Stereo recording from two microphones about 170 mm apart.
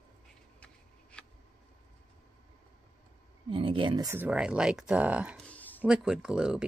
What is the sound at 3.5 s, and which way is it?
Speech, 30° right (ahead or behind).